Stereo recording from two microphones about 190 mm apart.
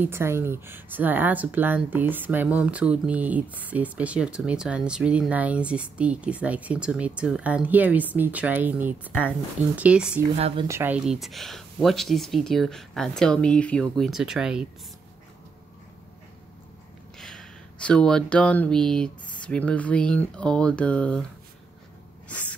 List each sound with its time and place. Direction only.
0.0 s speech: 15° right (ahead or behind)
10.3 s speech: 30° right (ahead or behind)
10.7 s speech: 10° right (ahead or behind)
17.2 s speech: 5° left (ahead or behind)